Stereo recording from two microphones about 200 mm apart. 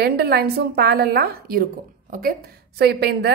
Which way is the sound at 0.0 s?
50° right (ahead or behind).